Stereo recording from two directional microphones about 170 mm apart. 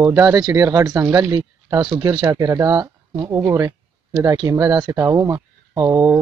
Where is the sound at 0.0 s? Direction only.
20° right (ahead or behind).